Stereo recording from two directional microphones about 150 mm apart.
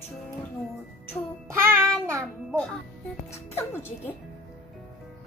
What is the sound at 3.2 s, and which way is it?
Speech, 15° left (ahead or behind).